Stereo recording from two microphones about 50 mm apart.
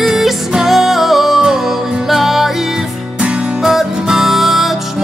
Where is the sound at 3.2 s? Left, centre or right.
Centre.